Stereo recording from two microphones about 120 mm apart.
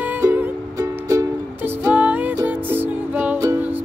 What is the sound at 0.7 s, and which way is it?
Music, 25° right (ahead or behind).